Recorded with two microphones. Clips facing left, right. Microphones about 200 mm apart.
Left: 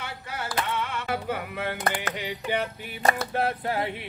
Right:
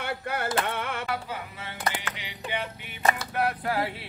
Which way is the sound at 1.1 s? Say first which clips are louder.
Left 4 dB; 55° left (ahead or behind).